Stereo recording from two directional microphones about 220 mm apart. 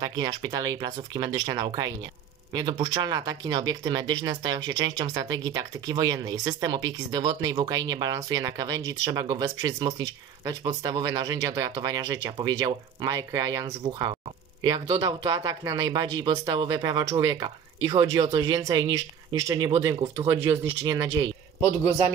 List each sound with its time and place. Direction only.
0.0 s speech: 20° right (ahead or behind)
21.5 s a man's voice: 15° left (ahead or behind)